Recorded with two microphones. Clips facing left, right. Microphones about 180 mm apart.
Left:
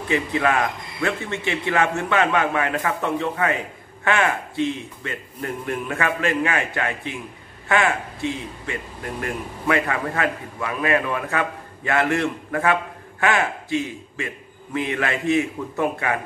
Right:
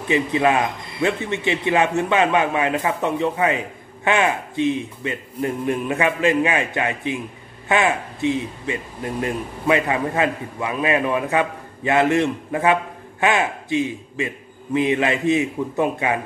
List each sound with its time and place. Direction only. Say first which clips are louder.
0.1 s a man's voice: right 3 dB; 20° right (ahead or behind)